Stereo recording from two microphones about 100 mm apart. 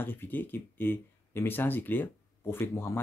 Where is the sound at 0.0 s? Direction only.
20° left (ahead or behind).